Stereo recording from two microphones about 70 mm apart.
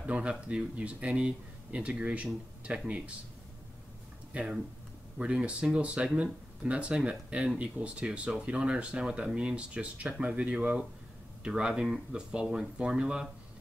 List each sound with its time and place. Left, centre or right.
0.0 s speech: centre
4.3 s speech: centre